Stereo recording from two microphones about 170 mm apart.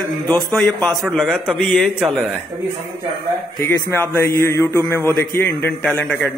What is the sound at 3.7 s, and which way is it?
A man's voice, 15° left (ahead or behind).